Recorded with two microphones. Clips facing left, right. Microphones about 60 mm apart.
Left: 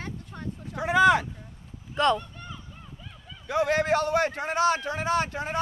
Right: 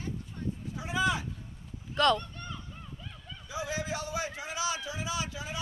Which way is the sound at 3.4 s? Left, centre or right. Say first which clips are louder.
Left 11 dB; left.